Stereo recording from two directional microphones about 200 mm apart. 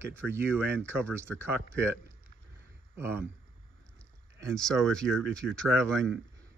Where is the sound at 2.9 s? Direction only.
10° right (ahead or behind).